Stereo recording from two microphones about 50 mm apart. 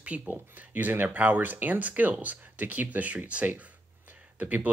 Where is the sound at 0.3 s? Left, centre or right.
Right.